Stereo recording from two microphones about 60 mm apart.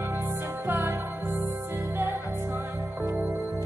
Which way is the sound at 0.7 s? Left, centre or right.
Right.